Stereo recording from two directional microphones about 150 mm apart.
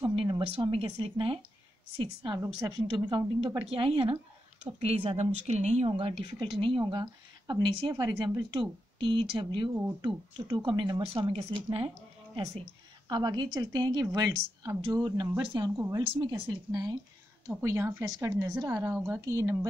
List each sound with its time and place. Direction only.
0.1 s a woman's voice: 35° right (ahead or behind)
13.1 s speech: 30° right (ahead or behind)
17.5 s speech: 15° right (ahead or behind)